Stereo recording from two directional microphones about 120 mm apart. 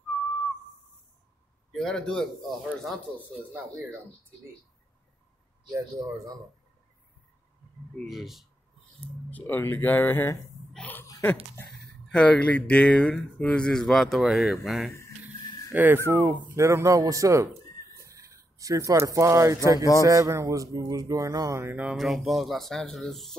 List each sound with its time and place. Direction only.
1.7 s speech: 5° left (ahead or behind)
5.7 s speech: 30° right (ahead or behind)
8.1 s speech: centre (ahead or behind)
9.3 s speech: 15° left (ahead or behind)
10.7 s laughter: 10° left (ahead or behind)
12.1 s speech: 10° left (ahead or behind)
15.7 s speech: 15° right (ahead or behind)
21.9 s speech: centre (ahead or behind)